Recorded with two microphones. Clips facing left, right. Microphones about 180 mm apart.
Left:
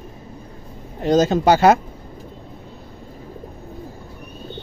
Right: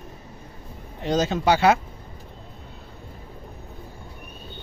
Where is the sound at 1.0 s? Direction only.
45° left (ahead or behind).